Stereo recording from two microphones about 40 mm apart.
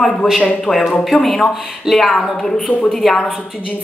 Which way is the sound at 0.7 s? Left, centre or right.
Left.